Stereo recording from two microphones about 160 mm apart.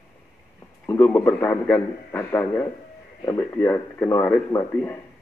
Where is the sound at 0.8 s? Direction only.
15° left (ahead or behind).